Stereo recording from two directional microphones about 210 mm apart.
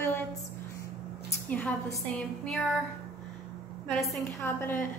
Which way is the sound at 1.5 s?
5° left (ahead or behind).